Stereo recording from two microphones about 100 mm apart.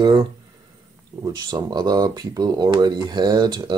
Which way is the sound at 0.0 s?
40° right (ahead or behind).